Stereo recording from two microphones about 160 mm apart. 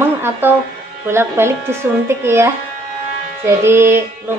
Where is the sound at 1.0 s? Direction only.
15° right (ahead or behind).